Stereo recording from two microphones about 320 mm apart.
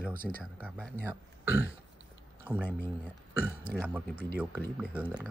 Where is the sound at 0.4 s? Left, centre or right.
Centre.